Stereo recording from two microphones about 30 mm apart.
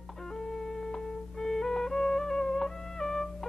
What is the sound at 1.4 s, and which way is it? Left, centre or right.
Music, centre.